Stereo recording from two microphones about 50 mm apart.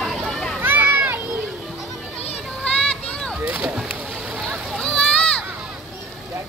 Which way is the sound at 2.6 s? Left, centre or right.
Centre.